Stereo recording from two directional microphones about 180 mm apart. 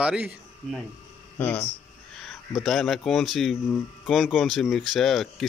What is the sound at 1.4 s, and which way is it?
Speech, 10° left (ahead or behind).